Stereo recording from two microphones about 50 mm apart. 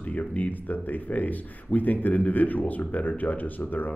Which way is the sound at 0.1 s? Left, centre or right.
Left.